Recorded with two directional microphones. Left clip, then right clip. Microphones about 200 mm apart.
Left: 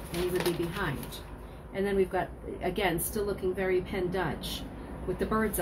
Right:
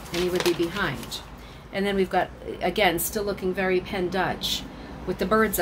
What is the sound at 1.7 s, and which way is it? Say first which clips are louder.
A woman's voice: right 5 dB; 50° right (ahead or behind).